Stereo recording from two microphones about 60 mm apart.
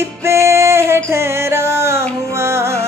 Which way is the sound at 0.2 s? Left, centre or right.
Right.